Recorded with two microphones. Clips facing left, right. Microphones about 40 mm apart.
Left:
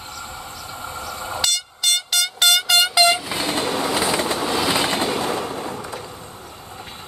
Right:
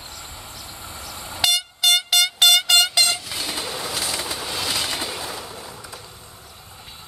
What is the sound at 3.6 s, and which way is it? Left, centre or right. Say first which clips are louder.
Train: left 7 dB; left.